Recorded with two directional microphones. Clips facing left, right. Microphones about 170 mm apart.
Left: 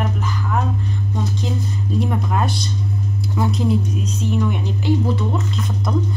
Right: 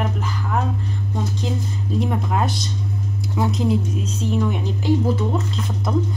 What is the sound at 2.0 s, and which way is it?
A woman's voice, 25° right (ahead or behind).